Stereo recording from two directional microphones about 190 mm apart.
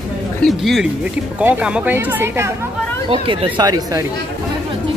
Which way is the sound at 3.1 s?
30° right (ahead or behind).